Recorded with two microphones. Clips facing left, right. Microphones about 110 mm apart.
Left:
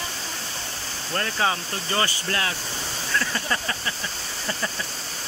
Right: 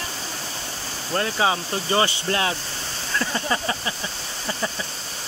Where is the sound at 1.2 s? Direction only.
15° right (ahead or behind).